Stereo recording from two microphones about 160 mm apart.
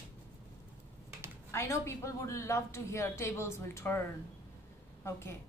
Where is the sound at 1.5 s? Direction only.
15° left (ahead or behind).